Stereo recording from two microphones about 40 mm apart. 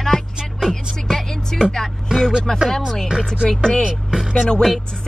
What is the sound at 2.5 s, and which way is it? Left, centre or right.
Speech, centre.